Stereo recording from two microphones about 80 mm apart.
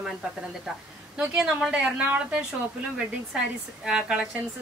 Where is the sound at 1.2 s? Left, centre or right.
Centre.